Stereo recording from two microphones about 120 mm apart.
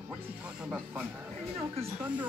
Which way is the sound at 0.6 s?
10° right (ahead or behind).